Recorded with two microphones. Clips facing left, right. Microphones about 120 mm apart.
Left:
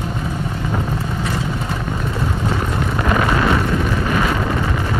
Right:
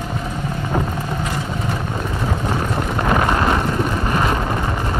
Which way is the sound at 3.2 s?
25° right (ahead or behind).